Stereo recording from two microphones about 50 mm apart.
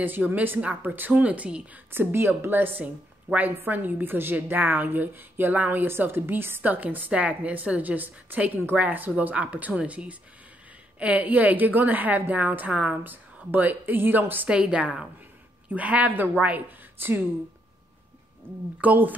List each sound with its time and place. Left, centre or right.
0.0 s a woman's voice: right
0.6 s a woman's voice: right
0.9 s a woman's voice: right
1.2 s a woman's voice: right
1.9 s a woman's voice: right
6.6 s a woman's voice: right
14.5 s a woman's voice: right
17.0 s a woman's voice: right
18.8 s a woman's voice: right